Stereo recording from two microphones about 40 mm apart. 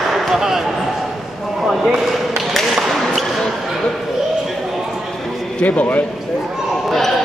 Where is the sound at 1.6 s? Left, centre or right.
Centre.